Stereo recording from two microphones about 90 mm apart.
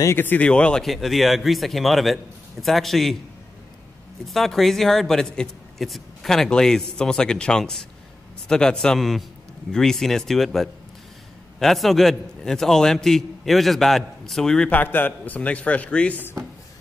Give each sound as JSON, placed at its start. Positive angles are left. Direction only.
{"t": 0.2, "sound": "a man's voice", "side_deg": 15}
{"t": 0.8, "sound": "a woman's voice", "side_deg": 0}
{"t": 4.3, "sound": "a woman's voice", "side_deg": 0}
{"t": 14.7, "sound": "a man's voice", "side_deg": 20}